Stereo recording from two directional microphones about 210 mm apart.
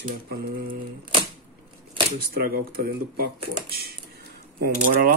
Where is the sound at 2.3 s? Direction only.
45° right (ahead or behind).